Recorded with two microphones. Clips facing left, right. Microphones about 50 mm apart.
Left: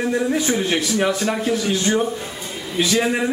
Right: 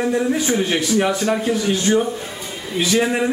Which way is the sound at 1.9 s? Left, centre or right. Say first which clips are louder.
Right 3 dB; centre.